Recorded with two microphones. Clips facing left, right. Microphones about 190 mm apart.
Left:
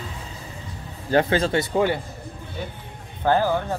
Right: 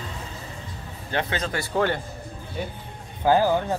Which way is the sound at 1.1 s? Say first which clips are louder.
Left 8 dB; 30° left (ahead or behind).